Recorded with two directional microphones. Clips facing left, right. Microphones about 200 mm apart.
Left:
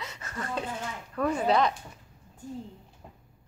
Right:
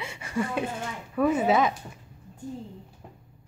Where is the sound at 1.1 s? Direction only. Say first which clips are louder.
Right 3 dB; 5° right (ahead or behind).